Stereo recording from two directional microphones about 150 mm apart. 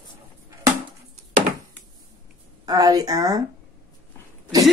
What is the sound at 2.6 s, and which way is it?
Speech, 25° right (ahead or behind).